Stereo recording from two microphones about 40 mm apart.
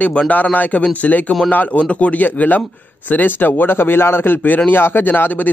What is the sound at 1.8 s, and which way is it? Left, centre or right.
Speech, left.